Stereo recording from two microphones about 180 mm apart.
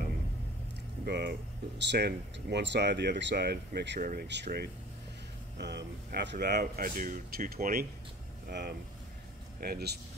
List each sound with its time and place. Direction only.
1.0 s speech: 65° right (ahead or behind)
4.0 s speech: 55° right (ahead or behind)